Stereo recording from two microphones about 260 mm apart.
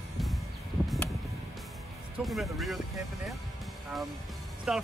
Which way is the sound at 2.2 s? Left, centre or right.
Centre.